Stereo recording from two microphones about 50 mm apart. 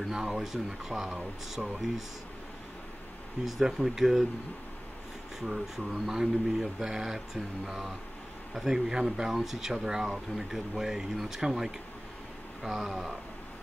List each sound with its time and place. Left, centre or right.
0.0 s speech: centre
3.4 s speech: centre
5.4 s speech: centre
12.7 s speech: centre